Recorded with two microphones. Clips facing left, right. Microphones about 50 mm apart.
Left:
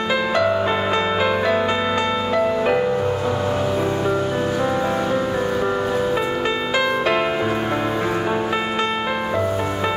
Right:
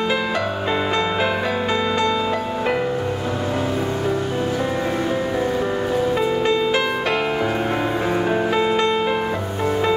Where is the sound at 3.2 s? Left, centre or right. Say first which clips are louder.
Left 2 dB; centre.